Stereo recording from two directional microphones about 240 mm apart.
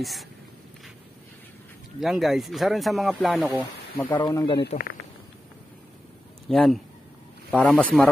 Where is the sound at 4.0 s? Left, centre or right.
Centre.